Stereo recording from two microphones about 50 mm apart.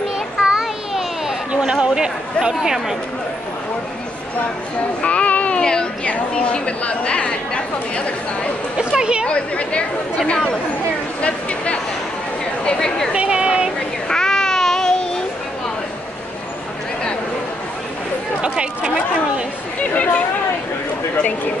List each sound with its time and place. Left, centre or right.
0.4 s a sound: centre
1.5 s speech: centre
5.0 s a sound: left
5.6 s speech: centre
8.7 s speech: centre
9.2 s speech: left
11.1 s speech: left
13.1 s speech: right
14.0 s child singing: centre
18.4 s speech: centre
19.8 s speech: left